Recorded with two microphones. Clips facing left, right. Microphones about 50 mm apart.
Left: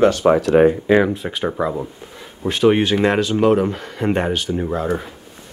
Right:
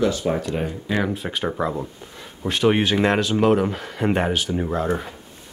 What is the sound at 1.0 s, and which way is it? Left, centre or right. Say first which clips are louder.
Speech: left 3 dB; centre.